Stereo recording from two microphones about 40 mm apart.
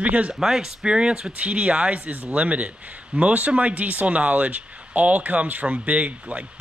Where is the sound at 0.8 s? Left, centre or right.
Right.